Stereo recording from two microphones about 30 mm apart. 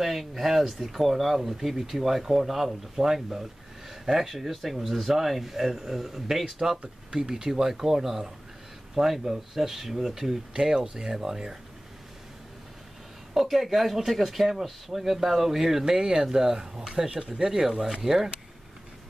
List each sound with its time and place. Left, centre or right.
0.0 s speech: centre
7.2 s speech: right
10.5 s speech: right
13.3 s speech: centre
15.8 s speech: right
17.2 s speech: right
17.5 s speech: centre